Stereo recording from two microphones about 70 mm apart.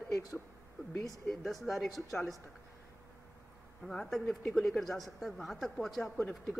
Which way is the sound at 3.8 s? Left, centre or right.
Centre.